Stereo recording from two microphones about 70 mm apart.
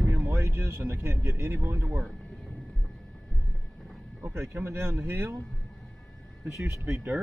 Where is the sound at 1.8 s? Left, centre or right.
Centre.